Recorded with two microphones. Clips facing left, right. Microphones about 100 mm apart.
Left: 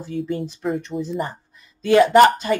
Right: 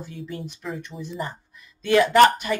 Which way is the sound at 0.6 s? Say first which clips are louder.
Left 9 dB; 45° left (ahead or behind).